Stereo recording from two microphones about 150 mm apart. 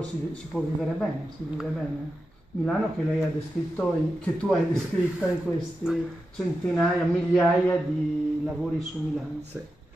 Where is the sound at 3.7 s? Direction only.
5° left (ahead or behind).